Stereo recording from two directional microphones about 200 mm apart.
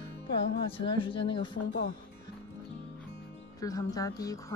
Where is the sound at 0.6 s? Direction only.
25° left (ahead or behind).